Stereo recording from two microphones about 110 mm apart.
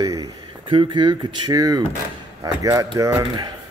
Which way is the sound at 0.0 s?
35° right (ahead or behind).